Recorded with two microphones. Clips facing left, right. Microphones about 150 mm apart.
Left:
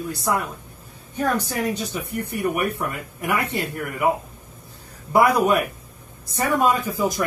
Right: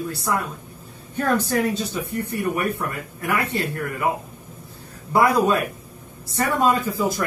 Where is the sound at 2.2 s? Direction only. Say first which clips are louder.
Left 1 dB; 20° left (ahead or behind).